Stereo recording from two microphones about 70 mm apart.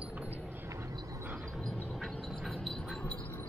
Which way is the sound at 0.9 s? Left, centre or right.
Right.